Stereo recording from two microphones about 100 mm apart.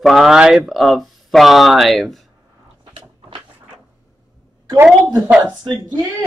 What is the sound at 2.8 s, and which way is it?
Cupboard open or close, 55° right (ahead or behind).